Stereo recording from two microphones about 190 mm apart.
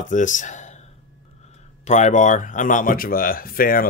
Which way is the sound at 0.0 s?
40° left (ahead or behind).